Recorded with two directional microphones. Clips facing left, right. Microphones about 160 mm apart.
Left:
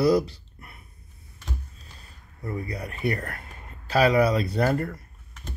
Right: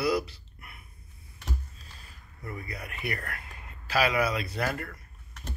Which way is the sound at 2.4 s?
35° left (ahead or behind).